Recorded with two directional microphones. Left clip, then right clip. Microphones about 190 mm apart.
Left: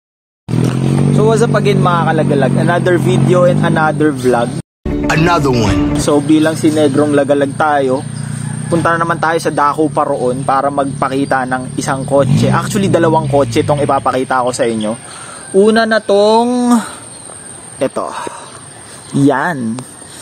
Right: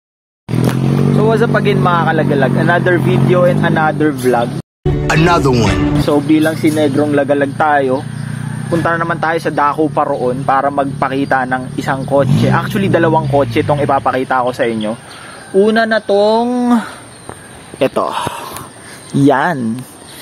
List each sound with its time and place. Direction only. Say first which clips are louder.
1.2 s speech: left 1 dB; 15° left (ahead or behind)
5.0 s speech: even; centre (ahead or behind)
6.0 s speech: left 2 dB; 15° left (ahead or behind)
15.6 s speech: left 2 dB; 25° left (ahead or behind)
17.7 s speech: right 3 dB; 30° right (ahead or behind)
19.1 s speech: right 1 dB; centre (ahead or behind)